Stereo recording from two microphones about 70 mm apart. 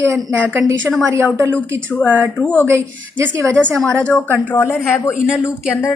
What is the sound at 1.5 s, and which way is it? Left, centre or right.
Speech, centre.